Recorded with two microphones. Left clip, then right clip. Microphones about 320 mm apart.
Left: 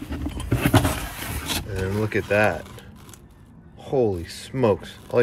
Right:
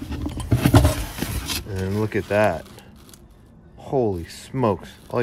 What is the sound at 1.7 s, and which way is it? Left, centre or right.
Speech, centre.